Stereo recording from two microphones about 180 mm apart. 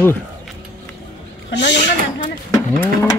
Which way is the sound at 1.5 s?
80° left.